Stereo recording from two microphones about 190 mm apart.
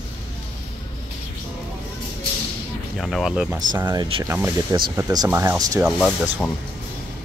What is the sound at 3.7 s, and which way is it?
Speech, 20° right (ahead or behind).